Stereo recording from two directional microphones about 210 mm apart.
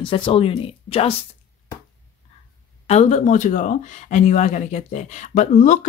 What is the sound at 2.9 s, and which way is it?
Speech, 35° left (ahead or behind).